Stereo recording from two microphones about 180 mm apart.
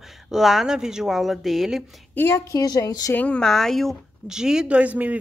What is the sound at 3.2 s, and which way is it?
Speech, 5° left (ahead or behind).